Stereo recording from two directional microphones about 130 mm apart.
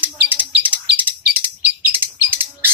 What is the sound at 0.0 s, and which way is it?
Bird, 15° right (ahead or behind).